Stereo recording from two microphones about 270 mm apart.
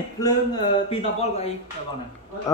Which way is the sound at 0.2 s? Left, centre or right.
Centre.